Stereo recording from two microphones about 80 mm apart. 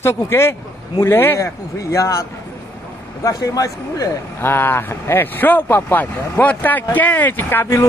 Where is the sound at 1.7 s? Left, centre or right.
Left.